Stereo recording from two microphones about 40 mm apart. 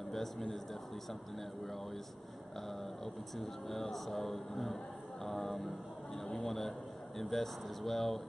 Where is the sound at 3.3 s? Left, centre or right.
Centre.